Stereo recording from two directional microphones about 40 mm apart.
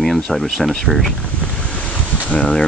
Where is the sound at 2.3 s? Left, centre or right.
Left.